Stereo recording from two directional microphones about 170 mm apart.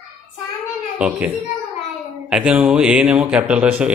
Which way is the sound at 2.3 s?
5° right (ahead or behind).